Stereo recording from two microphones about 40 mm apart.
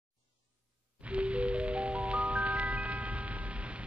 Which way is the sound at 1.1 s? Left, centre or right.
Right.